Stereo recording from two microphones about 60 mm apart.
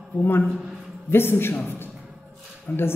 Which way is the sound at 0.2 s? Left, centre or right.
Left.